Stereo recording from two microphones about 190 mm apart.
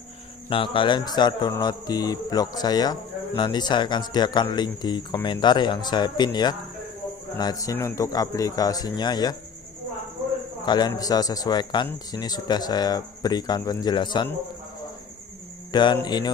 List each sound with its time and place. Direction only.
0.5 s speech: 25° left (ahead or behind)
10.6 s a man's voice: 20° left (ahead or behind)
15.7 s mantra: 25° left (ahead or behind)